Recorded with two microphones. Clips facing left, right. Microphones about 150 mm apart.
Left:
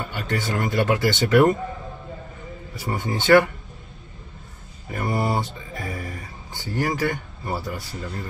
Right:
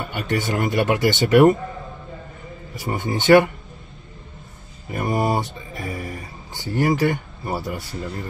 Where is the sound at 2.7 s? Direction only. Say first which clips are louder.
Right 2 dB; 20° right (ahead or behind).